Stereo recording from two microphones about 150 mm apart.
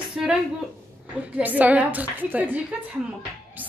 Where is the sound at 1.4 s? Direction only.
10° right (ahead or behind).